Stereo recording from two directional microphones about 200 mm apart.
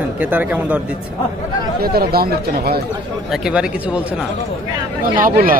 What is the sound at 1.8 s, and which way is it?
Speech, 50° right (ahead or behind).